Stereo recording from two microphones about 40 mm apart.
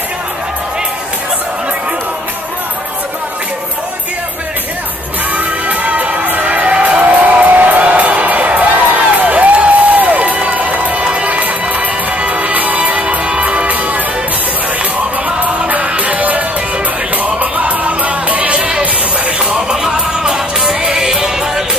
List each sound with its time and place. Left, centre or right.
5.4 s music: right
13.0 s music: right
15.8 s music: right
19.8 s music: centre